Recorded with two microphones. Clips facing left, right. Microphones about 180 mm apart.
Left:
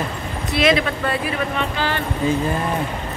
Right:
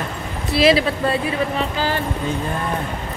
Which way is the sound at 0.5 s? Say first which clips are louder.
Right 3 dB; 30° right (ahead or behind).